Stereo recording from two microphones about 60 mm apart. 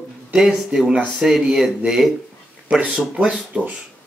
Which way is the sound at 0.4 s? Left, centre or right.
Centre.